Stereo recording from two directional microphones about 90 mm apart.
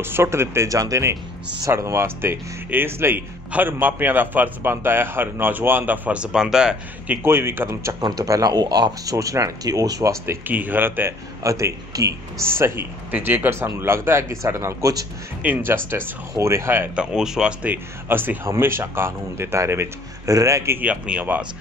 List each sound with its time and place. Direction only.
0.0 s speech: 25° right (ahead or behind); by 7.2 s 10° right (ahead or behind)
7.2 s speech: 25° right (ahead or behind)
8.0 s speech: 40° right (ahead or behind)
10.2 s speech: 25° right (ahead or behind)
11.4 s speech: 35° right (ahead or behind)
12.4 s speech: 25° right (ahead or behind)
15.4 s speech: 20° right (ahead or behind)
16.9 s speech: 10° right (ahead or behind)
18.0 s speech: 25° right (ahead or behind)
20.8 s speech: 15° right (ahead or behind)